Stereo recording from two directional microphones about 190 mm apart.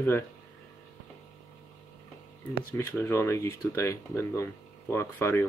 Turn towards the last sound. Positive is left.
turn(degrees=15)  # may be behind; listen again after turning